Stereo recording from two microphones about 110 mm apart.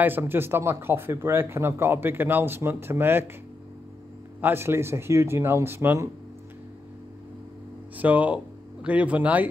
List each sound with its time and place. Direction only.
0.0 s speech: 20° right (ahead or behind)
4.4 s speech: 20° right (ahead or behind)
8.0 s speech: 15° right (ahead or behind)